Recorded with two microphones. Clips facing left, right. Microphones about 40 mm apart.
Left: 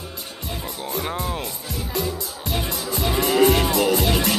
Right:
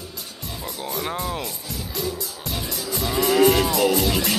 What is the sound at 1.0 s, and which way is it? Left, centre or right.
Speech, centre.